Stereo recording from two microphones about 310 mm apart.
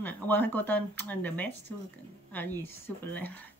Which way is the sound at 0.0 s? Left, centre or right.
Centre.